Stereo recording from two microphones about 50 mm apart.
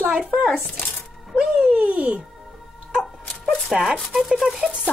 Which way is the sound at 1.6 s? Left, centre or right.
Right.